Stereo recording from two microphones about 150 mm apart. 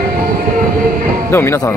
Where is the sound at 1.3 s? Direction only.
20° left (ahead or behind).